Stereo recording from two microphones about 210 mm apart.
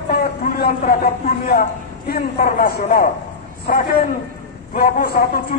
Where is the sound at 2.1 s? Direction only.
45° left (ahead or behind).